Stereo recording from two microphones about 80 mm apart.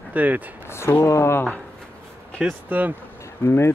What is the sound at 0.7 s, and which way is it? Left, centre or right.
Speech, left.